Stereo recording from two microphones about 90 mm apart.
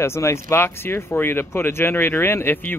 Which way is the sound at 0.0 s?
30° left (ahead or behind).